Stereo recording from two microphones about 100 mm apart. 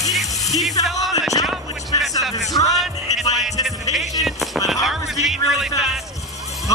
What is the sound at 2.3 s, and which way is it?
Speech, 35° left (ahead or behind).